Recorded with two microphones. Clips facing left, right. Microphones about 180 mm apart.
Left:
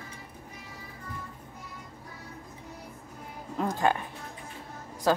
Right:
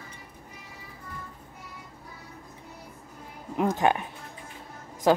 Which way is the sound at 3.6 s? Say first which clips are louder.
Right 3 dB; 20° right (ahead or behind).